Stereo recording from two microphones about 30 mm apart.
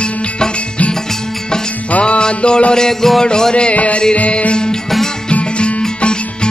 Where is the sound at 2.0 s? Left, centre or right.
Left.